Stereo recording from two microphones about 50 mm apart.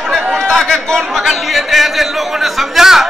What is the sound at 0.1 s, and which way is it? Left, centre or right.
Chatter, centre.